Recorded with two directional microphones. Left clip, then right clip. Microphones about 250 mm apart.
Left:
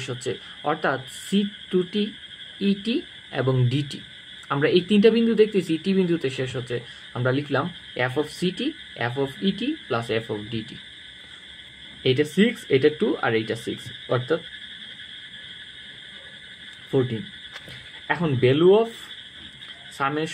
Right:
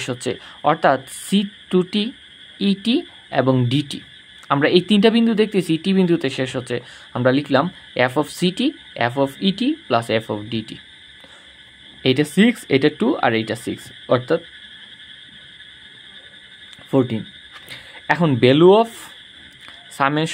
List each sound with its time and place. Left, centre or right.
0.0 s speech: right
12.0 s speech: right
18.0 s speech: right
20.0 s speech: right